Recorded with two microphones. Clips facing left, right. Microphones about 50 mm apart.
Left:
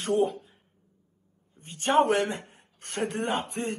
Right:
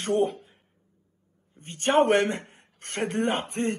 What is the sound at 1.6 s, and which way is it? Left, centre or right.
A man's voice, right.